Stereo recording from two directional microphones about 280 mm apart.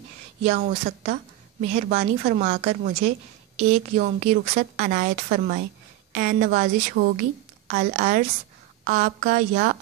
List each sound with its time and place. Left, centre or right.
0.4 s a woman's voice: right